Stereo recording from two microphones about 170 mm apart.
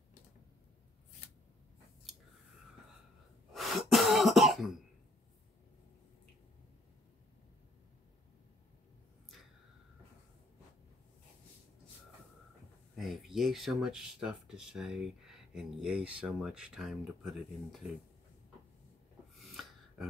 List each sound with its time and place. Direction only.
3.5 s cough: centre (ahead or behind)
12.9 s speech: centre (ahead or behind)
19.5 s gasp: centre (ahead or behind)